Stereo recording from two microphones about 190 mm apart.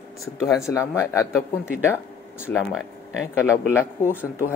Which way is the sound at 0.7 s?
15° left (ahead or behind).